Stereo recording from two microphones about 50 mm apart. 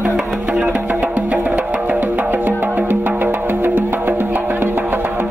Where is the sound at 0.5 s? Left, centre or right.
Centre.